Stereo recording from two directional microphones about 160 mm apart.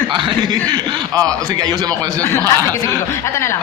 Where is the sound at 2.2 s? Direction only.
15° left (ahead or behind).